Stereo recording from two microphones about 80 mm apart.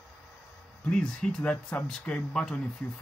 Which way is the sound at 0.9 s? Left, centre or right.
Centre.